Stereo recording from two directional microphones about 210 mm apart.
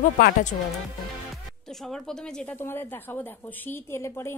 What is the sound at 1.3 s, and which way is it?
A woman's voice, centre (ahead or behind).